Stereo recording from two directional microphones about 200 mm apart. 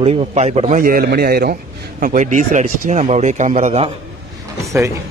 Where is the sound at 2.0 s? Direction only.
40° right (ahead or behind).